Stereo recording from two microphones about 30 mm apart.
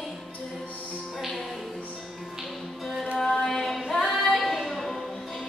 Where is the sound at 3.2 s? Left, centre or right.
Centre.